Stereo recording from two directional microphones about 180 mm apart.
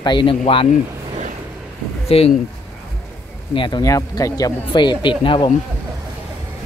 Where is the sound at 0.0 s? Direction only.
25° left (ahead or behind).